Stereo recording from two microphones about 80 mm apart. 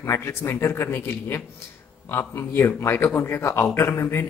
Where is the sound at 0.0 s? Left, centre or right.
Left.